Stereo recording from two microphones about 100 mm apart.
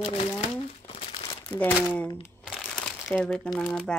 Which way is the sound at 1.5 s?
25° left (ahead or behind).